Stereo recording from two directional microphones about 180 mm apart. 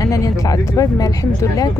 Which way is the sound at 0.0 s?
15° left (ahead or behind).